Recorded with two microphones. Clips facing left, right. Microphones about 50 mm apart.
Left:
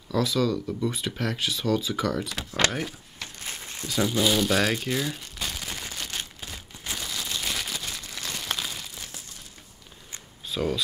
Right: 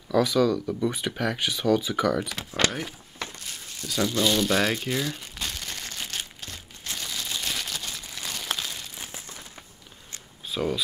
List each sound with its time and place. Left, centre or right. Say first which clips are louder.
0.1 s speech: right 3 dB; right
0.7 s speech: right 2 dB; centre
1.4 s speech: right 3 dB; right
2.4 s speech: left 1 dB; centre
3.4 s crumpling: left 3 dB; left
3.8 s speech: even; centre
5.9 s a sound: even; centre
8.0 s crumpling: even; centre
8.9 s a sound: right 2 dB; right
10.4 s a sound: even; centre